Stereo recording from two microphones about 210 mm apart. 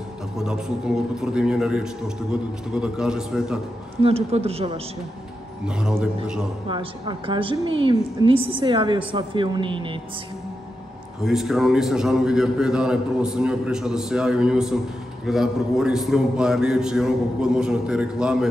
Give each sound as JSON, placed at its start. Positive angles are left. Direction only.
{"t": 0.4, "sound": "a man's voice", "side_deg": 0}
{"t": 4.0, "sound": "a woman's voice", "side_deg": -30}
{"t": 5.8, "sound": "a man's voice", "side_deg": -5}
{"t": 6.7, "sound": "a woman's voice", "side_deg": -25}
{"t": 11.2, "sound": "a man's voice", "side_deg": 0}